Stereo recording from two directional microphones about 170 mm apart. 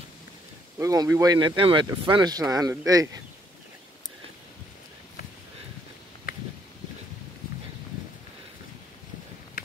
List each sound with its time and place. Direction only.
0.7 s speech: 20° right (ahead or behind)